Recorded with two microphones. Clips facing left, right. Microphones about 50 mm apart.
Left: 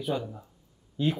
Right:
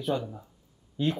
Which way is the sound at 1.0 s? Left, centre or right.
Centre.